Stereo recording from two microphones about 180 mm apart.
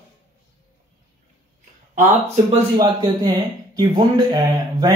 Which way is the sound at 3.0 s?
25° right (ahead or behind).